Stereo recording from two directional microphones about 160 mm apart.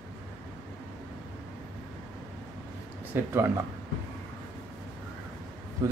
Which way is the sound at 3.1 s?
15° right (ahead or behind).